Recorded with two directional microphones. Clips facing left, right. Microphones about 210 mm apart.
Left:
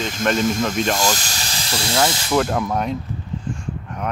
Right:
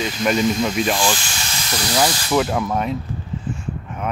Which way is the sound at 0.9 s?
40° left (ahead or behind).